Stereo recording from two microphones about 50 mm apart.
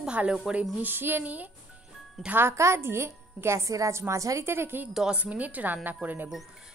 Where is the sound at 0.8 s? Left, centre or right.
Right.